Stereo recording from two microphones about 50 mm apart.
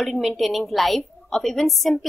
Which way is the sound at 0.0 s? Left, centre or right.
Centre.